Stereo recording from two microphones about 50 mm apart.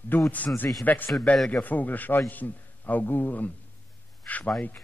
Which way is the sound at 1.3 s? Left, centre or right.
Left.